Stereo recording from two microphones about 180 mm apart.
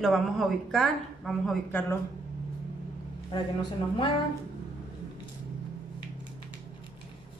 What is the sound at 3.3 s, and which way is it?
Speech, 25° left (ahead or behind).